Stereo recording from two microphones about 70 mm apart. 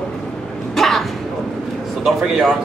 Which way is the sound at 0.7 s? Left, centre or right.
Centre.